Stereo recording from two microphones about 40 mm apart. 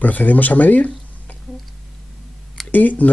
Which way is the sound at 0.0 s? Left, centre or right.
Left.